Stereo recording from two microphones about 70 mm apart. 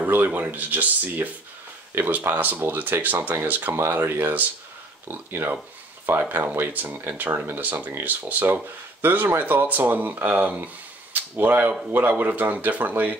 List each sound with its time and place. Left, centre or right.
0.0 s speech: right